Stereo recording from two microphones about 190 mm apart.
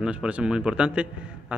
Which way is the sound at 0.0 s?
5° right (ahead or behind).